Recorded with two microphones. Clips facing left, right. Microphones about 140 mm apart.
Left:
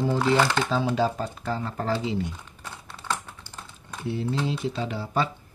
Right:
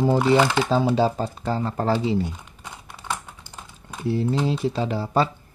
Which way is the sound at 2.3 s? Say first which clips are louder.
Right 1 dB; 15° right (ahead or behind).